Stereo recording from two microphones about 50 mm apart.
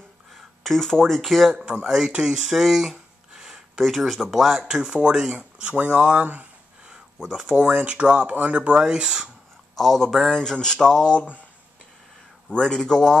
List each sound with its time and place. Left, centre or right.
0.3 s speech: centre
2.6 s speech: centre
4.6 s speech: centre; by 6.4 s right
7.2 s speech: centre
9.8 s speech: centre
12.5 s speech: centre